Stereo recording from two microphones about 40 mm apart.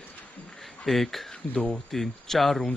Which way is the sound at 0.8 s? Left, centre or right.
Centre.